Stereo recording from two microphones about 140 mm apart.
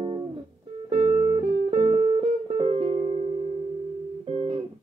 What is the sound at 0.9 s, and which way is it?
Music, 55° right (ahead or behind).